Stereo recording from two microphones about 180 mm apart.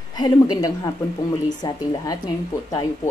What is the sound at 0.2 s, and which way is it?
A woman's voice, 20° left (ahead or behind).